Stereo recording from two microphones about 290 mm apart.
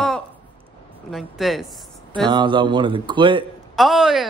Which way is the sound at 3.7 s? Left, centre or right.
Centre.